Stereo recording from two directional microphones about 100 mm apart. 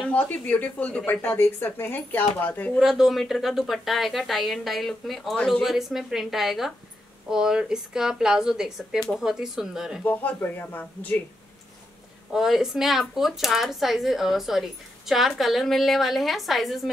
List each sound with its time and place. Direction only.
0.1 s speech: 15° left (ahead or behind)
2.8 s speech: 5° right (ahead or behind)
10.0 s speech: 20° left (ahead or behind)
12.3 s speech: 5° right (ahead or behind)